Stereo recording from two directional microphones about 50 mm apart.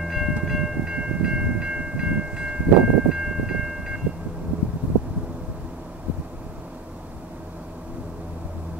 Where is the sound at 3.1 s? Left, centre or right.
Centre.